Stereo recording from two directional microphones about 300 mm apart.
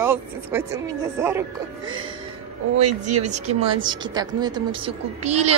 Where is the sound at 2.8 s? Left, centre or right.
Right.